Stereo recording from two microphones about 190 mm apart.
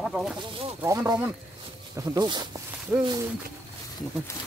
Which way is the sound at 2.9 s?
10° right (ahead or behind).